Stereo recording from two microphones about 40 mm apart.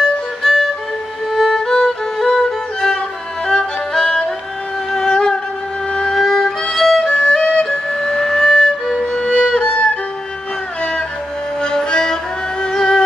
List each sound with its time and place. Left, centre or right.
0.4 s violin: centre
1.3 s music: centre
3.4 s violin: centre
4.9 s a sound: centre
5.9 s violin: left
6.1 s violin: centre
7.1 s music: centre
9.2 s music: left
9.5 s violin: left
10.8 s music: left